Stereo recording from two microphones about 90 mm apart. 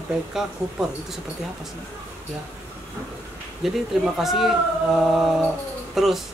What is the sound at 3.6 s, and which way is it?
Mantra, 5° right (ahead or behind).